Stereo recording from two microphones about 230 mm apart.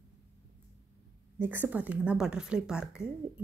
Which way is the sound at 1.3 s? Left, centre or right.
Centre.